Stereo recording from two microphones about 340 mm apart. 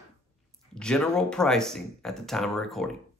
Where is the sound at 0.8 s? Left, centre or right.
Centre.